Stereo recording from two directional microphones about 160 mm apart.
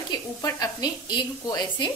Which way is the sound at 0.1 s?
20° left (ahead or behind).